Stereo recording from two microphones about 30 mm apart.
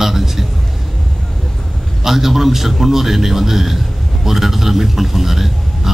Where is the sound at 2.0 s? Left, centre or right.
Centre.